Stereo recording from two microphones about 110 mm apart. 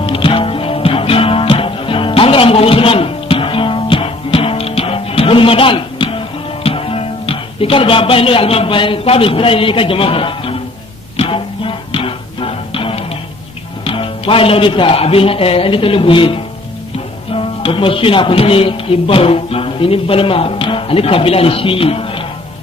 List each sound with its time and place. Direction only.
0.0 s music: 55° left (ahead or behind)
13.8 s speech: 55° left (ahead or behind)